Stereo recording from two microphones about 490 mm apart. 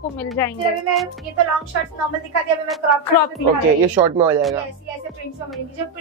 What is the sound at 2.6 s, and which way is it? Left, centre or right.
A woman's voice, centre.